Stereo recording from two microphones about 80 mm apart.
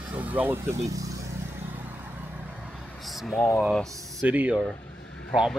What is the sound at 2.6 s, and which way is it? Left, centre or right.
Vehicle, centre.